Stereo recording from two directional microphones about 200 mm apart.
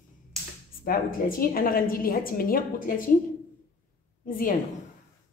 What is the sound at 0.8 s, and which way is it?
Speech, 45° left (ahead or behind).